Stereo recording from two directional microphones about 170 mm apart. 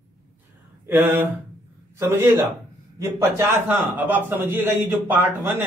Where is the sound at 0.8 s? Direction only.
10° right (ahead or behind).